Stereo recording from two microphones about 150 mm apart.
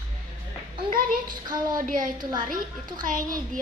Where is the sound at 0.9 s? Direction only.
75° right (ahead or behind).